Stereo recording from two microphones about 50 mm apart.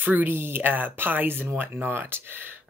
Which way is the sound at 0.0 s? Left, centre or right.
Right.